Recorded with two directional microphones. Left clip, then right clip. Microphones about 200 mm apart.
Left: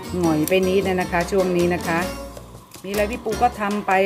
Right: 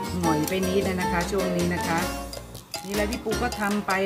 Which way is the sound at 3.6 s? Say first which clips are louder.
Left 6 dB; 35° left (ahead or behind).